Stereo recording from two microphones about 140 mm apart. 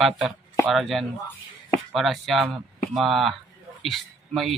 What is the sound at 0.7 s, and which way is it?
Speech, centre (ahead or behind).